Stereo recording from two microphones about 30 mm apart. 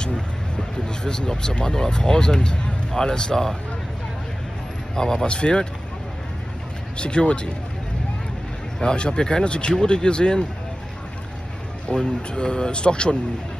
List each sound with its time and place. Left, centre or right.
0.8 s speech: left
2.5 s music: left
3.0 s speech: left
4.9 s speech: left
5.2 s speech: left
7.0 s speech: left
8.7 s speech: left
11.9 s speech: left